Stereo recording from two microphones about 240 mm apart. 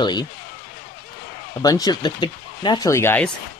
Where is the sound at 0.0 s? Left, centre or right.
Centre.